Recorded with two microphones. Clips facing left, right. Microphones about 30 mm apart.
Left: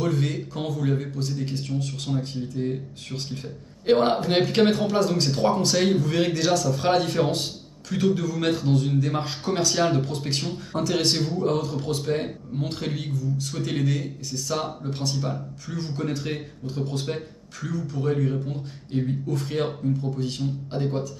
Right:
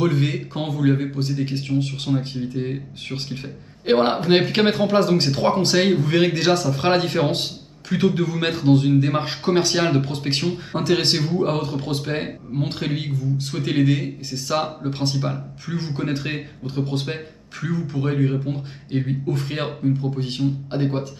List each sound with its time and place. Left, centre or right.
0.0 s a man's voice: right